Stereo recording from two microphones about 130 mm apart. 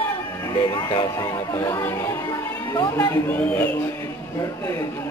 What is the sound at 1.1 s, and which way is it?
Speech, 25° left (ahead or behind).